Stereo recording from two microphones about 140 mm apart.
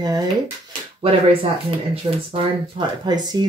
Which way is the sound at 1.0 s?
40° right (ahead or behind).